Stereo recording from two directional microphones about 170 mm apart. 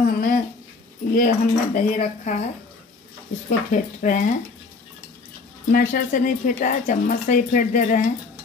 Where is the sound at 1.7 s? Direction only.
50° left (ahead or behind).